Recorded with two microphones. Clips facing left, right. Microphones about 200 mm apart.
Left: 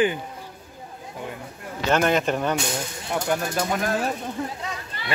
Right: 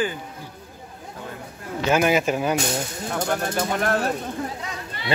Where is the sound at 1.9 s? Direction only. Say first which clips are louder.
Right 1 dB; 10° right (ahead or behind).